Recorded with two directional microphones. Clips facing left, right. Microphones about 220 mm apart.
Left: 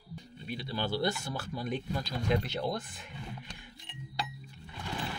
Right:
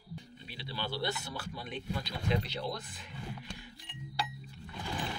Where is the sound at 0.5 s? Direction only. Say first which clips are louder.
Left 6 dB; 45° left (ahead or behind).